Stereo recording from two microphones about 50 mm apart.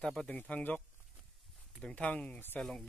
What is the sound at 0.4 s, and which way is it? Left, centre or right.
Speech, left.